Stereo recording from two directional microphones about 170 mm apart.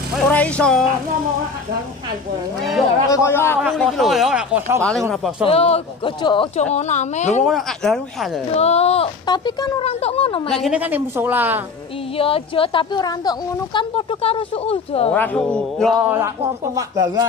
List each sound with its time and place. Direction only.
0.3 s speech: 5° left (ahead or behind)
3.1 s speech: 15° left (ahead or behind)
3.7 s speech: centre (ahead or behind)
5.4 s speech: 35° left (ahead or behind)
7.4 s speech: centre (ahead or behind)
8.5 s speech: 35° left (ahead or behind)
10.5 s a woman's voice: 5° right (ahead or behind)
12.2 s speech: 35° left (ahead or behind)
15.1 s speech: 5° left (ahead or behind)
16.1 s speech: 20° right (ahead or behind)